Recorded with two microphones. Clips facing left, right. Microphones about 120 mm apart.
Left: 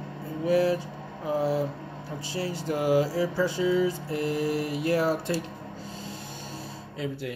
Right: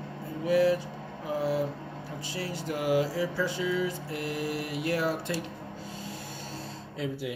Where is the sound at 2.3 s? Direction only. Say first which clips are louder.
Left 4 dB; 30° left (ahead or behind).